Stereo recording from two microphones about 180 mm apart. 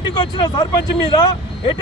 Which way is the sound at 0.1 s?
25° left (ahead or behind).